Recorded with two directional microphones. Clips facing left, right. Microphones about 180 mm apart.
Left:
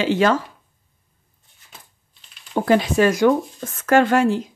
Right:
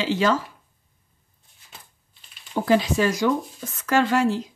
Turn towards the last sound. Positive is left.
turn(degrees=55)  # may be behind; listen again after turning